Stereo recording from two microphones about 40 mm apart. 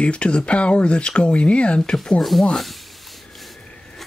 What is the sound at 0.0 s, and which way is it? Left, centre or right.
Speech, left.